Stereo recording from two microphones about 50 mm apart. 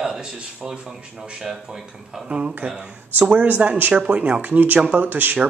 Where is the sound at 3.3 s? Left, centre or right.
Right.